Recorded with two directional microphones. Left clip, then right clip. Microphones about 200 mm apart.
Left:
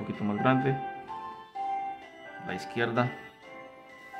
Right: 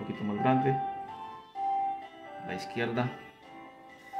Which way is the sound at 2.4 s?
20° left (ahead or behind).